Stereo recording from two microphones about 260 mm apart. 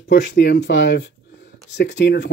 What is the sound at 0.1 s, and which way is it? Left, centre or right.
Speech, left.